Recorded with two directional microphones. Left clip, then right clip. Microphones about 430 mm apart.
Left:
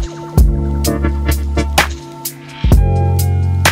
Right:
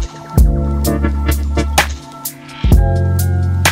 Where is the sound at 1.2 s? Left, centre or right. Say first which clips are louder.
Even; centre.